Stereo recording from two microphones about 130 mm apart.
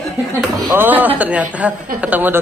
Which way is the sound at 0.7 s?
15° right (ahead or behind).